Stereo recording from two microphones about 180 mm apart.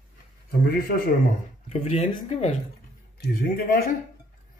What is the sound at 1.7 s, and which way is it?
Speech, 35° left (ahead or behind).